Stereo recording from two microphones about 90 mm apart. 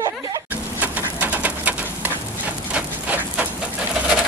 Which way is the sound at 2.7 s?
15° right (ahead or behind).